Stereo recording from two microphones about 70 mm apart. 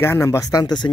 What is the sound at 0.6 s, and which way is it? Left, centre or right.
Speech, left.